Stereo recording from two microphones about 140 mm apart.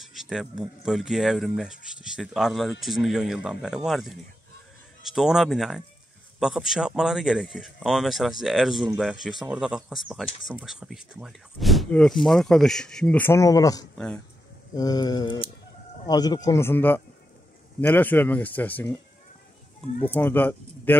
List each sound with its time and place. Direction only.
0.0 s speech: centre (ahead or behind); by 13.8 s 25° left (ahead or behind)
13.9 s speech: 5° left (ahead or behind)
14.8 s a man's voice: 25° left (ahead or behind)
20.1 s speech: 15° left (ahead or behind)